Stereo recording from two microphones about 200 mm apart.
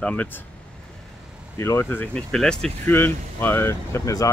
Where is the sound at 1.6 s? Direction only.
10° left (ahead or behind).